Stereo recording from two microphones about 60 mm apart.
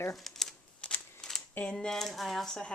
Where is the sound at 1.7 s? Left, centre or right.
Centre.